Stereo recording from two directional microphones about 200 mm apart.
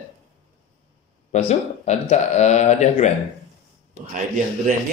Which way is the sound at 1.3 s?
35° left (ahead or behind).